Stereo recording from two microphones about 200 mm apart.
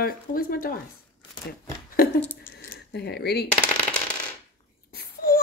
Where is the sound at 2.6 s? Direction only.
50° left (ahead or behind).